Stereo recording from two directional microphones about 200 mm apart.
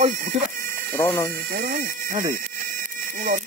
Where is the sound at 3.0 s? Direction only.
40° right (ahead or behind).